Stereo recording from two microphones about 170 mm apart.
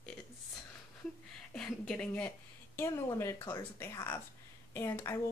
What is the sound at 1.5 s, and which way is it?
A woman's voice, 5° left (ahead or behind).